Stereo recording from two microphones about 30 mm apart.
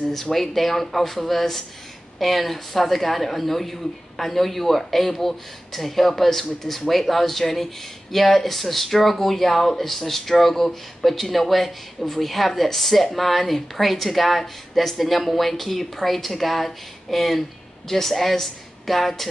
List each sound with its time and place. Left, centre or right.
0.1 s a woman's voice: centre